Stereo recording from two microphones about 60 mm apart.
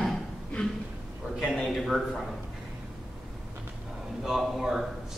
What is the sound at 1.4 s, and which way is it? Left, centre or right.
Speech, centre.